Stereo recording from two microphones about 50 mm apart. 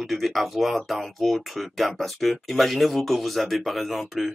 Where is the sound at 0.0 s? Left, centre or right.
Centre.